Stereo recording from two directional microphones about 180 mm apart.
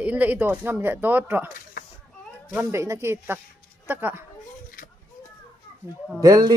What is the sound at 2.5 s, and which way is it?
Speech, 15° right (ahead or behind).